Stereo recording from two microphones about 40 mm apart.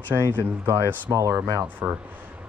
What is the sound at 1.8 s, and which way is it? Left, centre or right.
Speech, right.